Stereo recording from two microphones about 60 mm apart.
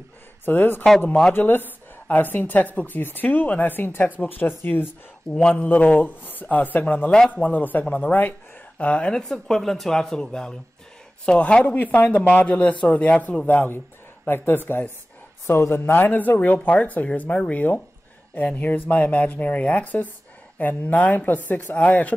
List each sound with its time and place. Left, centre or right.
0.5 s a woman's voice: left
5.3 s speech: centre
9.2 s a woman's voice: centre; by 14.9 s left
15.4 s speech: left